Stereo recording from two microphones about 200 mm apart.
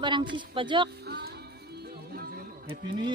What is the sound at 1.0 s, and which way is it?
Music, 55° right (ahead or behind).